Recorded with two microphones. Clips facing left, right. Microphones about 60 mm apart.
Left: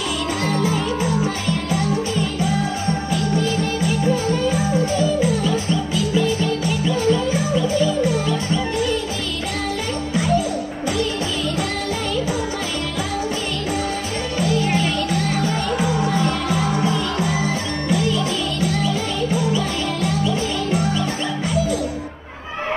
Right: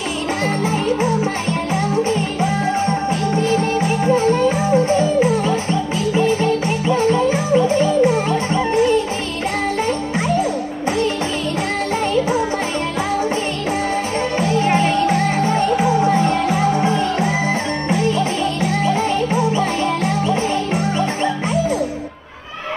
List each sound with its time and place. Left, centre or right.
0.6 s music: right
2.4 s music: right
10.1 s music: right
14.4 s music: right